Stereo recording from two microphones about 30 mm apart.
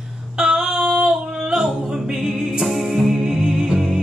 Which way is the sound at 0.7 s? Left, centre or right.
Right.